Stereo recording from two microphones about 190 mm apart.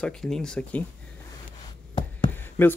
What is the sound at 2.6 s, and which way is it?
Speech, 10° left (ahead or behind).